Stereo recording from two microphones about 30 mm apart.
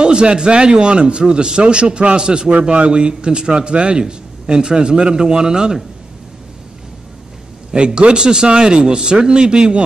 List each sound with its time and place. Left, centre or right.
0.0 s a man's voice: right
7.7 s a man's voice: right